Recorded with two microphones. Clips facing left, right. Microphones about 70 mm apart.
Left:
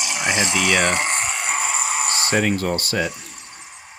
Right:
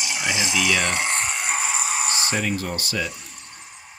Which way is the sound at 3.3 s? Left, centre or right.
Centre.